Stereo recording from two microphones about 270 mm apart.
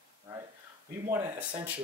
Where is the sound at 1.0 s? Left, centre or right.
Centre.